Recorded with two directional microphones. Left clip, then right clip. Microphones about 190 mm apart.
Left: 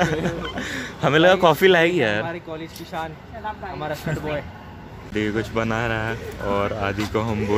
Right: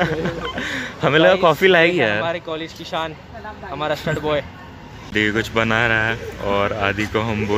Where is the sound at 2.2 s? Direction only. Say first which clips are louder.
Right 7 dB; 35° right (ahead or behind).